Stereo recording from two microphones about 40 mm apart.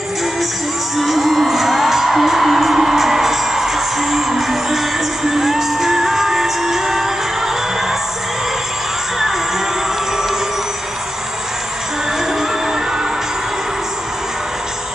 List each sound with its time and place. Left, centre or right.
0.9 s music: centre